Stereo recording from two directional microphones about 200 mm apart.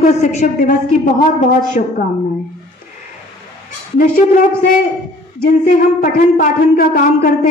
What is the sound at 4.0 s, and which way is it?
Speech, 40° left (ahead or behind).